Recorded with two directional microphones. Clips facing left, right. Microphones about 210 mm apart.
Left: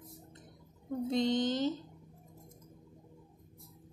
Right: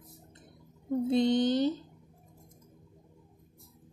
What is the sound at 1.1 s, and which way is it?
Speech, 10° right (ahead or behind).